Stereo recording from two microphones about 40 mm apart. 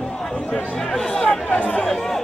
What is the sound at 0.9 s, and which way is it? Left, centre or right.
Chatter, centre.